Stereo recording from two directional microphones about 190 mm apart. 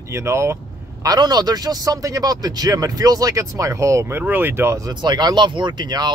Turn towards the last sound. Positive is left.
turn(degrees=-20)  # may be behind; listen again after turning